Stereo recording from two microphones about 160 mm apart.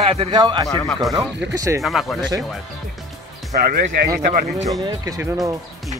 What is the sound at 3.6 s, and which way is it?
Speech, 70° right (ahead or behind).